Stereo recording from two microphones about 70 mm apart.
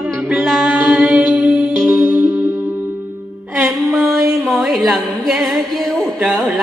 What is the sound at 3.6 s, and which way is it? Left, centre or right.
Music, centre.